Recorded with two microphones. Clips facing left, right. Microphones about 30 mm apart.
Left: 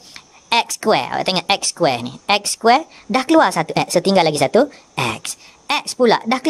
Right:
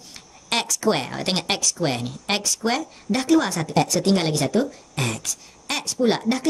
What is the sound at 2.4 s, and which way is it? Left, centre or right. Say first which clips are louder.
Speech: left 10 dB; left.